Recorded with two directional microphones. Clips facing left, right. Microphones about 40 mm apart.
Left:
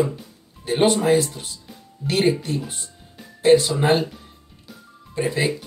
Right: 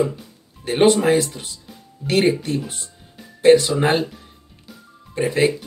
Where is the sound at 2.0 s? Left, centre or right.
Right.